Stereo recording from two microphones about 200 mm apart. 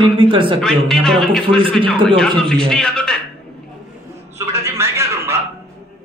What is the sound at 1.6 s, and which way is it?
Speech, 25° right (ahead or behind).